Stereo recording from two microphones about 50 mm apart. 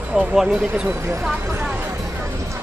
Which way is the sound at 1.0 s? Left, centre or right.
Right.